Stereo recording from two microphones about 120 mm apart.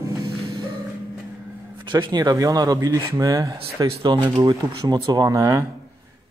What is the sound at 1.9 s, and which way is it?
Speech, 40° right (ahead or behind).